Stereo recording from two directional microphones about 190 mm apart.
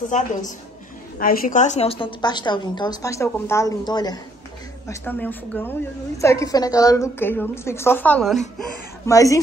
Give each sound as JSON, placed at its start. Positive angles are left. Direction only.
{"t": 0.1, "sound": "a woman's voice", "side_deg": 40}
{"t": 4.8, "sound": "a woman's voice", "side_deg": 10}
{"t": 9.0, "sound": "a woman's voice", "side_deg": 15}